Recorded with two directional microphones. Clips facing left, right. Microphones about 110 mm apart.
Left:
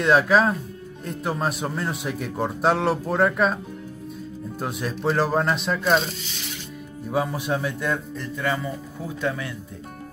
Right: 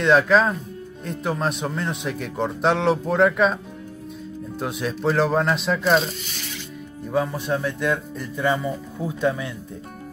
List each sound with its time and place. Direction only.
0.0 s speech: 5° left (ahead or behind)
4.6 s speech: centre (ahead or behind)
7.1 s speech: 10° left (ahead or behind)
8.2 s speech: 20° right (ahead or behind)